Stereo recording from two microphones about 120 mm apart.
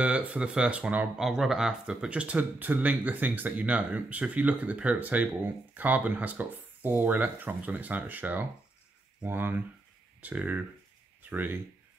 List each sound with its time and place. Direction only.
0.0 s speech: 10° right (ahead or behind)